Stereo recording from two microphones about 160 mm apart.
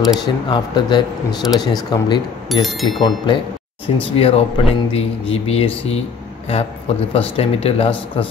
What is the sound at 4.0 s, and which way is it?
Speech, 35° left (ahead or behind).